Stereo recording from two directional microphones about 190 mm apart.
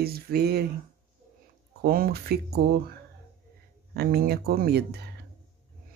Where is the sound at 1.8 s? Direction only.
50° right (ahead or behind).